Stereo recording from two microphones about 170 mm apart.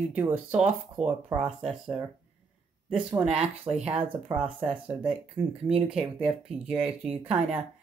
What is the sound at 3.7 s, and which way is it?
Speech, 5° right (ahead or behind).